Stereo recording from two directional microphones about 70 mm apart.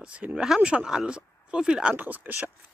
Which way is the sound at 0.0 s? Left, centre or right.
Centre.